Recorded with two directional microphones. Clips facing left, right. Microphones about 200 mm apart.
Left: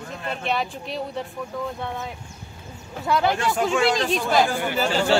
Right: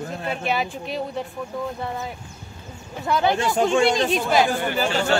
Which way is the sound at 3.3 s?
25° right (ahead or behind).